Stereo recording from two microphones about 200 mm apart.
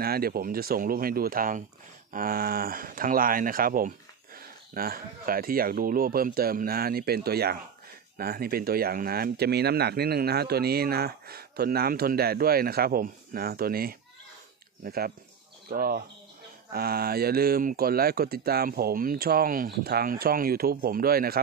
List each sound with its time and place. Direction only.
0.0 s speech: 50° right (ahead or behind)